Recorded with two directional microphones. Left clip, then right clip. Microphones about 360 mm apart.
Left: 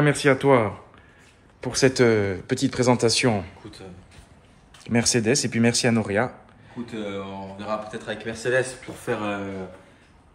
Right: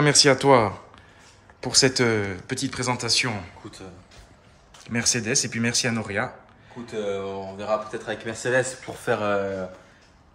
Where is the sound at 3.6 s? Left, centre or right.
Right.